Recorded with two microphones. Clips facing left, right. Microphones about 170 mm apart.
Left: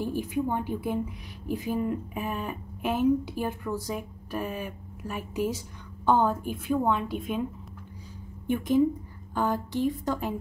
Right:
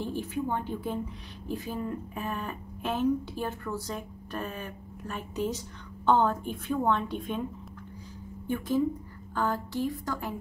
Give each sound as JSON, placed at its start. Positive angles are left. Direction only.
{"t": 0.0, "sound": "a woman's voice", "side_deg": 10}
{"t": 8.5, "sound": "a woman's voice", "side_deg": 15}